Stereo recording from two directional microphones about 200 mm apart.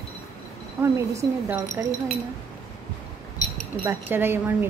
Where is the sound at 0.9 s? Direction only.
15° right (ahead or behind).